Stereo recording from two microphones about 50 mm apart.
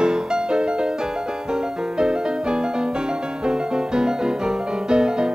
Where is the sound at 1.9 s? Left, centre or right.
Centre.